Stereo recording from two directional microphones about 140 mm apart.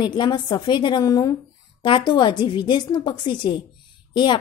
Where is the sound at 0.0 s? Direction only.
30° left (ahead or behind).